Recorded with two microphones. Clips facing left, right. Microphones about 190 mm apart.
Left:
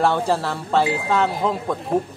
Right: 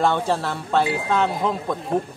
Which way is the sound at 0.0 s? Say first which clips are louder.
Left 1 dB; 5° left (ahead or behind).